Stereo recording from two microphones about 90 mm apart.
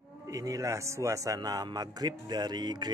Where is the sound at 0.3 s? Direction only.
40° right (ahead or behind).